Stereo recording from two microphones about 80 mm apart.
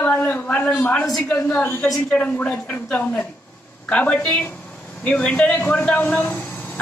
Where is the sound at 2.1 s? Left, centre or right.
Centre.